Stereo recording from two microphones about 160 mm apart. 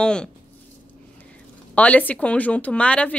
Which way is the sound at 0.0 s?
5° left (ahead or behind).